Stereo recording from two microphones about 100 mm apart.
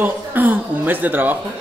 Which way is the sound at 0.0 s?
20° right (ahead or behind).